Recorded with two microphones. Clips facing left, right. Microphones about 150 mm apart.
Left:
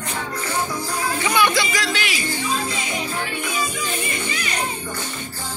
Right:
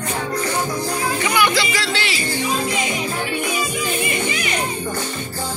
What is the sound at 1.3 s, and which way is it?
Music, 20° left (ahead or behind).